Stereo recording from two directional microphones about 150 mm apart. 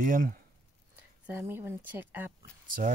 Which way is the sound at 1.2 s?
15° right (ahead or behind).